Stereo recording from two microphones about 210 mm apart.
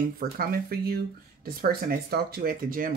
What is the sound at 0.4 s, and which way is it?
Speech, 45° right (ahead or behind).